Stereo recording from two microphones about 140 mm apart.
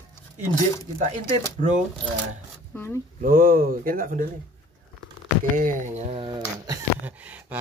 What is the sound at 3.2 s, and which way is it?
Speech, 85° right.